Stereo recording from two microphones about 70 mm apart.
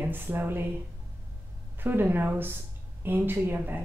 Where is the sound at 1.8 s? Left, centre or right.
Right.